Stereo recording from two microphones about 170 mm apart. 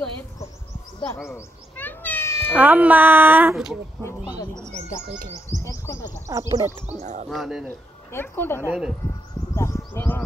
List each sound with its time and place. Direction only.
1.3 s cat: 10° left (ahead or behind)
2.6 s speech: 10° right (ahead or behind)
5.6 s speech: 20° left (ahead or behind)
6.2 s speech: 20° right (ahead or behind)
6.9 s speech: 45° right (ahead or behind)
7.2 s a man's voice: centre (ahead or behind)
8.1 s speech: 15° left (ahead or behind)
8.6 s a man's voice: 5° right (ahead or behind)
9.6 s a sound: 15° left (ahead or behind)